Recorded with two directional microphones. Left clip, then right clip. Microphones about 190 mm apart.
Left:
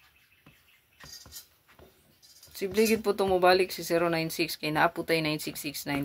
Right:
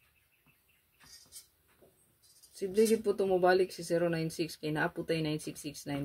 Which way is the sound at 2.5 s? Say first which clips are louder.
Left 2 dB; 5° right (ahead or behind).